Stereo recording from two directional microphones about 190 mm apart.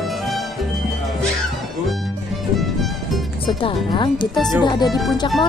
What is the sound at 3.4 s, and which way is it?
Speech, 25° left (ahead or behind).